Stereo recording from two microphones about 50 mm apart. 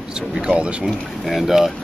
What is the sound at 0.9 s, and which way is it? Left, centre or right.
Speech, centre.